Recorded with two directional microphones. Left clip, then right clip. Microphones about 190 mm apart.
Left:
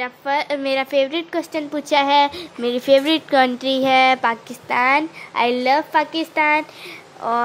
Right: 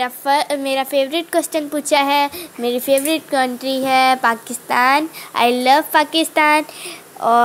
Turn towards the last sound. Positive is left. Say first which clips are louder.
# right 7 dB
turn(degrees=-20)  # may be behind; listen again after turning